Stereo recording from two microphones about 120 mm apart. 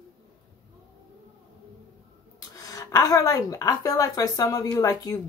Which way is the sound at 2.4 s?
30° left (ahead or behind).